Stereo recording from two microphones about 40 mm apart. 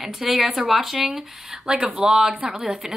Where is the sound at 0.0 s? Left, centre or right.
Centre.